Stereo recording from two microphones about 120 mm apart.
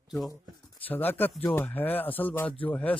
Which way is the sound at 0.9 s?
15° left (ahead or behind).